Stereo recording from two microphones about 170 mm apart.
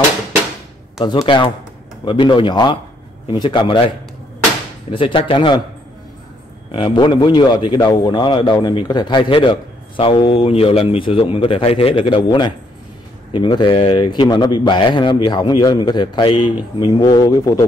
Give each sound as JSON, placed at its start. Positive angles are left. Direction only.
{"t": 1.0, "sound": "a man's voice", "side_deg": 30}
{"t": 4.9, "sound": "a man's voice", "side_deg": 30}
{"t": 6.7, "sound": "a man's voice", "side_deg": 30}